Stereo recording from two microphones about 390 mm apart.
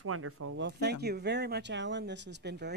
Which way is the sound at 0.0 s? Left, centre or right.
Right.